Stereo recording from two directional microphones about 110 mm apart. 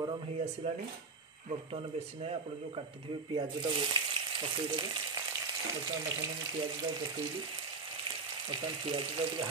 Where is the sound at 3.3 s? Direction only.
45° right (ahead or behind).